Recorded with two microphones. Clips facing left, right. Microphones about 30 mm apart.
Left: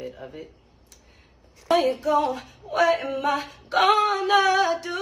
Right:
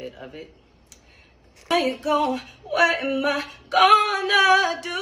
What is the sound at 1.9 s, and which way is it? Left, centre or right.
Female singing, right.